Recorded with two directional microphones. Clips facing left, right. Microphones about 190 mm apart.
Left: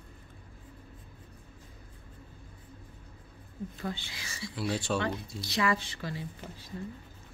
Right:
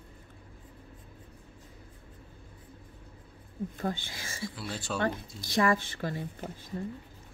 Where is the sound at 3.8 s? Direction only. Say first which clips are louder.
Right 4 dB; 45° right (ahead or behind).